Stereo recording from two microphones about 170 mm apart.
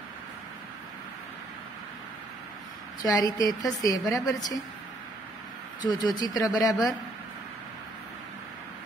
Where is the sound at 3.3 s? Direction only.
20° left (ahead or behind).